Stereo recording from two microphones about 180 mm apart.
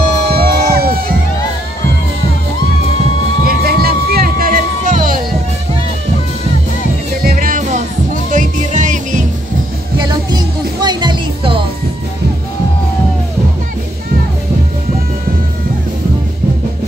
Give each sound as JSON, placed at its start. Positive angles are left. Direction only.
{"t": 0.3, "sound": "music", "side_deg": -60}
{"t": 3.4, "sound": "music", "side_deg": -60}
{"t": 7.2, "sound": "music", "side_deg": -50}
{"t": 9.9, "sound": "music", "side_deg": -25}